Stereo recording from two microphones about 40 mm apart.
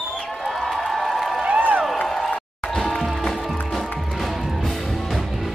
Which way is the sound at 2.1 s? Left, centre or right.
Centre.